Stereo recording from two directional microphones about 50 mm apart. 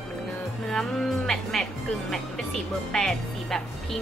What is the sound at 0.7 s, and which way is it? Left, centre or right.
Speech, centre.